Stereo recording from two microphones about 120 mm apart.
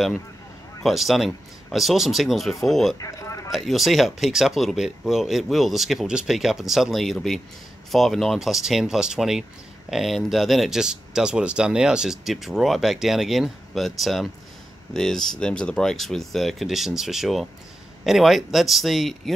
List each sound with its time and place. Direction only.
0.8 s speech: centre (ahead or behind)
3.0 s a sound: 25° left (ahead or behind)
3.5 s speech: centre (ahead or behind)